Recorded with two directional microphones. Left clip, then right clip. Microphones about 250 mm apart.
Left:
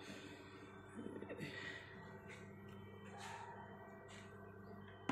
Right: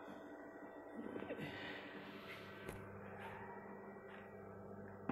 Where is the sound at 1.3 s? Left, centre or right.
Centre.